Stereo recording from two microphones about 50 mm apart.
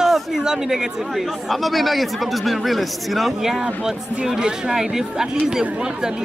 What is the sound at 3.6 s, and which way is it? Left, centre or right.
Speech, centre.